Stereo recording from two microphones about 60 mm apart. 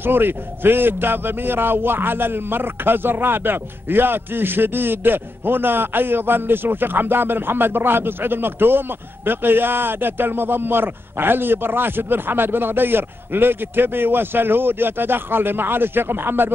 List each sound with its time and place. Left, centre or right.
0.0 s a man's voice: right